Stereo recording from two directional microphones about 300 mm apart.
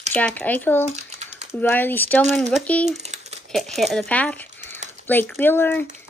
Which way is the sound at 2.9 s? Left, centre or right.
Right.